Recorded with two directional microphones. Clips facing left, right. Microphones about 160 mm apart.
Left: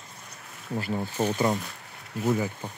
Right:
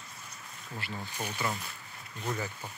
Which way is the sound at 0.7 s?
45° left (ahead or behind).